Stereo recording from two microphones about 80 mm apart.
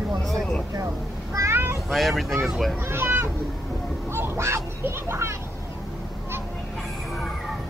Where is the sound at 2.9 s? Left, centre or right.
Right.